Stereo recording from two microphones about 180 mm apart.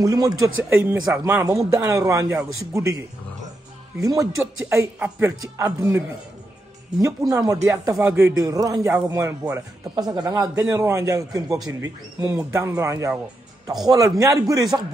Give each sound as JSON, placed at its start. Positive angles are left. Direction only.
{"t": 0.0, "sound": "speech", "side_deg": -20}
{"t": 0.7, "sound": "speech", "side_deg": -10}
{"t": 4.0, "sound": "speech", "side_deg": -20}
{"t": 4.4, "sound": "speech", "side_deg": -10}
{"t": 8.4, "sound": "speech", "side_deg": -20}